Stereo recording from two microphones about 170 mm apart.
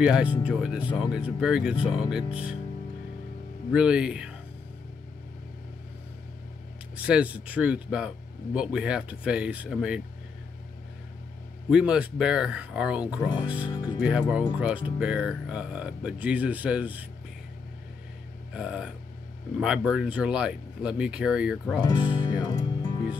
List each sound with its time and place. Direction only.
0.0 s speech: 5° right (ahead or behind)
3.7 s speech: 5° right (ahead or behind)
7.0 s speech: 10° right (ahead or behind)
11.7 s speech: 5° right (ahead or behind)
18.5 s speech: 5° right (ahead or behind)
21.8 s speech: 30° left (ahead or behind)
22.5 s music: 25° left (ahead or behind)